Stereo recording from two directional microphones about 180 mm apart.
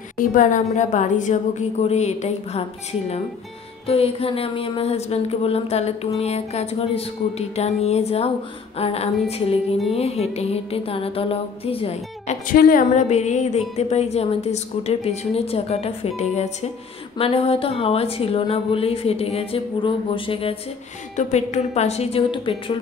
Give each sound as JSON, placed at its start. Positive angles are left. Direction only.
{"t": 0.2, "sound": "a woman's voice", "side_deg": 45}